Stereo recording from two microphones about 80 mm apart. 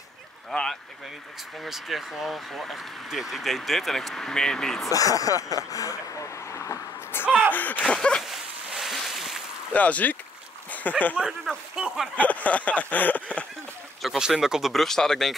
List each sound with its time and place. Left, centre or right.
0.5 s speech: centre
4.8 s speech: left
7.9 s a sound: centre
8.2 s dog: centre
9.7 s a sound: centre
10.7 s speech: centre
11.1 s speech: centre
12.2 s a sound: centre
14.0 s speech: centre